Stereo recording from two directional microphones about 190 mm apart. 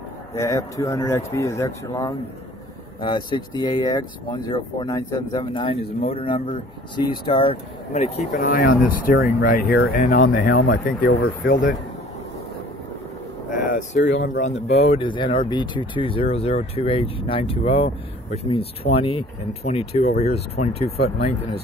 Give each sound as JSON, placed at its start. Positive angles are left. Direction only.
{"t": 0.3, "sound": "speech", "side_deg": 15}
{"t": 13.5, "sound": "a sound", "side_deg": 45}
{"t": 14.2, "sound": "speech", "side_deg": 45}
{"t": 14.8, "sound": "speech", "side_deg": 30}